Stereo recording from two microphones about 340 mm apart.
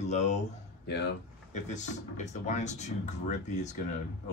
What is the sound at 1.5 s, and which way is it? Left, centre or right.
Speech, left.